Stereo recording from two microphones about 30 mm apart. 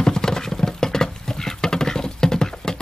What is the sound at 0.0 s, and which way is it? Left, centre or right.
Patter, left.